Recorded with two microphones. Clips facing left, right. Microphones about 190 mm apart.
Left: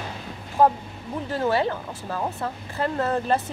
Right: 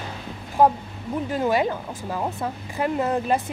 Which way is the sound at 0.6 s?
15° right (ahead or behind).